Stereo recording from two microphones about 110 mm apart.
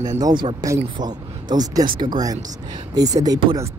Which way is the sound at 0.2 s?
45° right (ahead or behind).